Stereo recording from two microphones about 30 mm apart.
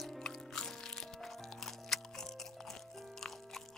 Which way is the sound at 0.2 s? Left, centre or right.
Centre.